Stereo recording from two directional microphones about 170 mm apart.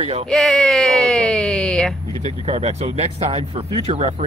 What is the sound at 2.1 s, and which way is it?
Speech, 40° right (ahead or behind).